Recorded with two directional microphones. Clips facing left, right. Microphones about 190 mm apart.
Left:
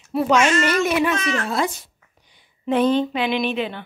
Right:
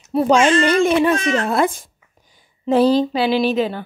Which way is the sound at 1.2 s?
50° right (ahead or behind).